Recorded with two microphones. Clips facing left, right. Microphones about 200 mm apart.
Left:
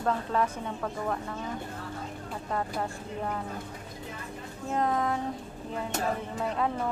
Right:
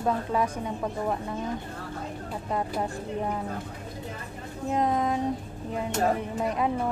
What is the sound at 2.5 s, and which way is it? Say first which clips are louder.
Speech: right 3 dB; 15° right (ahead or behind).